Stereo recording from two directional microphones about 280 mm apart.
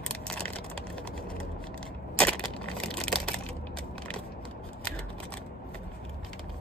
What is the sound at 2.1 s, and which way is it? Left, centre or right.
Crushing, centre.